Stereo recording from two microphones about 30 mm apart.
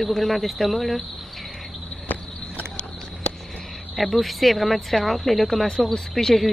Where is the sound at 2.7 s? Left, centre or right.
Left.